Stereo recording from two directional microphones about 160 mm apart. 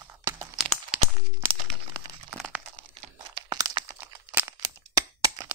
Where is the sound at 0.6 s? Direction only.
Centre (ahead or behind).